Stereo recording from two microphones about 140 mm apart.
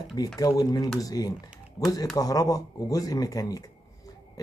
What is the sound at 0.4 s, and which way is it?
Speech, 25° left (ahead or behind).